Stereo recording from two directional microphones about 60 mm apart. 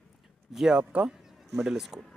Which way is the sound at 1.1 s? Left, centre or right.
Centre.